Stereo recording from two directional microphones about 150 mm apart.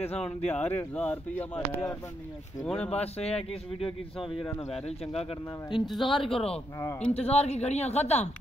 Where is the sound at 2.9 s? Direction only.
45° left (ahead or behind).